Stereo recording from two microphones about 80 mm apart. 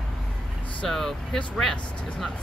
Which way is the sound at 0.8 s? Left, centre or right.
Centre.